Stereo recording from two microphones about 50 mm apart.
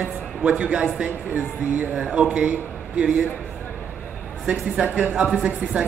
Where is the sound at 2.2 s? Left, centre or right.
Right.